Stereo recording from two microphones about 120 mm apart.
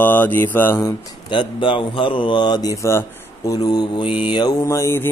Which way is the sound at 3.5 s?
35° left (ahead or behind).